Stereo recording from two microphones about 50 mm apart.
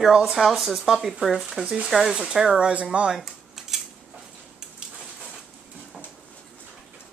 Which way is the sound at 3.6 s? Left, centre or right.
Centre.